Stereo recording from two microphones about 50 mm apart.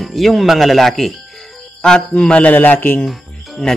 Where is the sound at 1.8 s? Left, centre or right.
Centre; by 3.0 s left.